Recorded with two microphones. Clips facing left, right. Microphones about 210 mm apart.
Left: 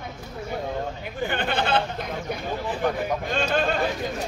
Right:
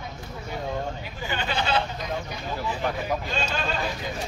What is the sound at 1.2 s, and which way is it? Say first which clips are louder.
Speech: left 4 dB; 55° left (ahead or behind).